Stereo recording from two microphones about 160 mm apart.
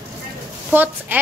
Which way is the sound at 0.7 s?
10° right (ahead or behind).